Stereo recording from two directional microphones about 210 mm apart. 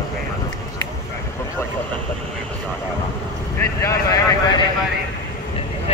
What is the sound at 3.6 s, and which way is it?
Vehicle, 15° left (ahead or behind).